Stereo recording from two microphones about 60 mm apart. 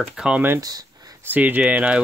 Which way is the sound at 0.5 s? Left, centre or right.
Right.